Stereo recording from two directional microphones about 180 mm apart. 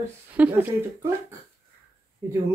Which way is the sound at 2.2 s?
15° right (ahead or behind).